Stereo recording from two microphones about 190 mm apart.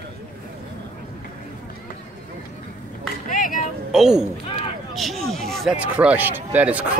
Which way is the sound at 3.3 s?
45° left (ahead or behind).